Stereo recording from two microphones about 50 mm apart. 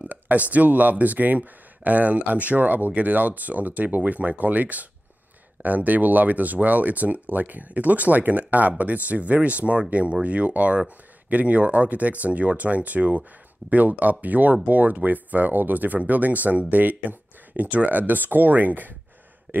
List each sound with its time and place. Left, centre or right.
0.1 s speech: right